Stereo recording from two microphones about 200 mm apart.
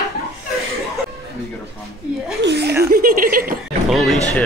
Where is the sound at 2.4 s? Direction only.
55° right (ahead or behind).